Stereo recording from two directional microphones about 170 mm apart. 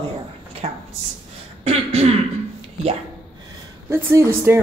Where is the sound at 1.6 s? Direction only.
40° right (ahead or behind).